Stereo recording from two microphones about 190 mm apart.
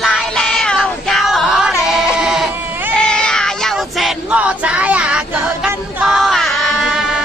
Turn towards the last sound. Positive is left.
turn(degrees=-5)  # may be behind; listen again after turning